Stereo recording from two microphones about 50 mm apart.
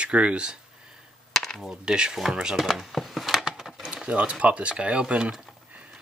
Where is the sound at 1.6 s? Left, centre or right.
Centre.